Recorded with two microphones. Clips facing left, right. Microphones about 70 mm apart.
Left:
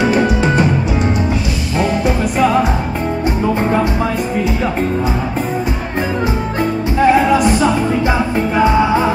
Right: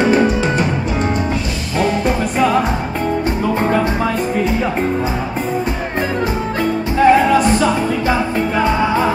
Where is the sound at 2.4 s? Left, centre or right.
Centre.